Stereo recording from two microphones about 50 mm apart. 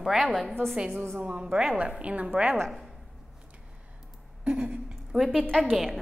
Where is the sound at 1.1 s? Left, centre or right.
Right.